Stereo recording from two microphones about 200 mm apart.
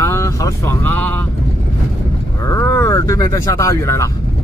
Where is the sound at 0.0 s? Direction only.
15° left (ahead or behind).